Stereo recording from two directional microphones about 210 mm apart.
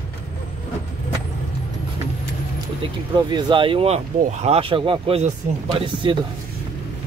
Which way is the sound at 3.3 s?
20° right (ahead or behind).